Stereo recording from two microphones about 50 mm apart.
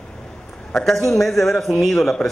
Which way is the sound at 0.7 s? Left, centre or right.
Centre.